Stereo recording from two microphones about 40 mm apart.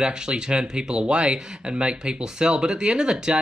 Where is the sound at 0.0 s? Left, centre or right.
Right.